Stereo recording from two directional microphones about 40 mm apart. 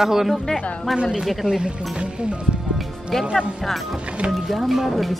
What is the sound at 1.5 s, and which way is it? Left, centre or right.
Speech, right.